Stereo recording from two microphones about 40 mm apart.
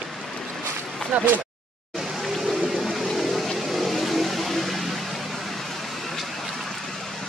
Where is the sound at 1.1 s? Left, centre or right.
Right.